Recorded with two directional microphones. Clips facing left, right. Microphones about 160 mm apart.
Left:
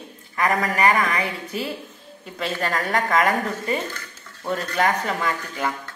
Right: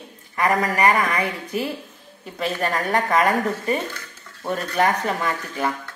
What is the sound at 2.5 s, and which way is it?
A woman's voice, 15° right (ahead or behind).